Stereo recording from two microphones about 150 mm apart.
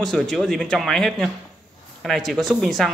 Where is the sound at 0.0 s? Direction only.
5° left (ahead or behind).